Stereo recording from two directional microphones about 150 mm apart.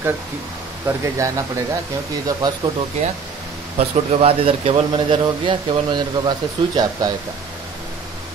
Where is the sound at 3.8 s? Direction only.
40° right (ahead or behind).